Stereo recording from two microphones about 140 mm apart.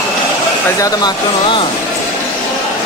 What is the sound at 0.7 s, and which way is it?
Speech, 25° left (ahead or behind).